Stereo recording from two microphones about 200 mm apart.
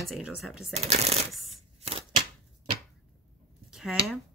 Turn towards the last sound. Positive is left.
turn(degrees=0)  # may be behind; listen again after turning